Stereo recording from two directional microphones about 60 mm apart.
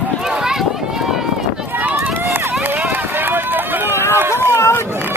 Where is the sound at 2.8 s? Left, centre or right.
Right.